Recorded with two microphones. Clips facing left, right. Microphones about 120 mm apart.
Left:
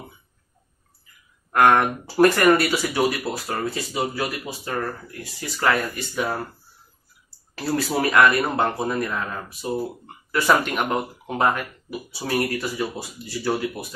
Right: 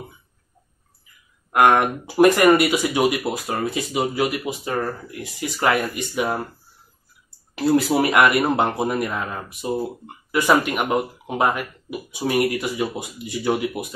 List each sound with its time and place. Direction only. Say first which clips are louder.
1.5 s speech: right 1 dB; 15° right (ahead or behind)
7.5 s speech: right 6 dB; 20° right (ahead or behind)
10.5 s speech: right 2 dB; 5° right (ahead or behind)